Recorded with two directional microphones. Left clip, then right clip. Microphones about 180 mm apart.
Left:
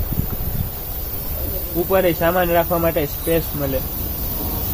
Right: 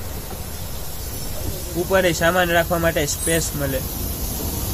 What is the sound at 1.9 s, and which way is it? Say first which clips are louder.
Speech: even; centre (ahead or behind).